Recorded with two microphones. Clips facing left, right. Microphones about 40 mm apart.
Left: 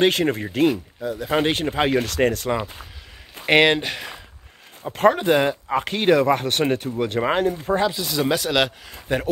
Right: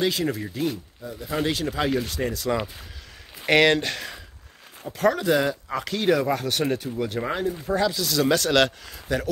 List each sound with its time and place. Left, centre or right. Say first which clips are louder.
0.0 s speech: left 5 dB; left
1.2 s speech: left 4 dB; left
2.0 s speech: left 7 dB; left
3.4 s speech: left 2 dB; left
4.8 s speech: left 4 dB; left
7.7 s speech: right 1 dB; left
8.9 s speech: left 3 dB; left